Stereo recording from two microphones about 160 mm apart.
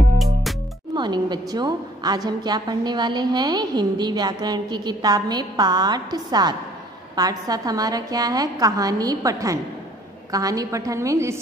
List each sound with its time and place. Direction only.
0.2 s music: centre (ahead or behind)
0.9 s a woman's voice: 25° right (ahead or behind)